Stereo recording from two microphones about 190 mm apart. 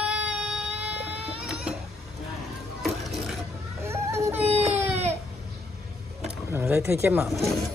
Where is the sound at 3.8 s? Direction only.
15° right (ahead or behind).